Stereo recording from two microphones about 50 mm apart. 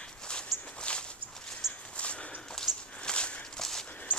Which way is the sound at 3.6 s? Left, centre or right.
Centre.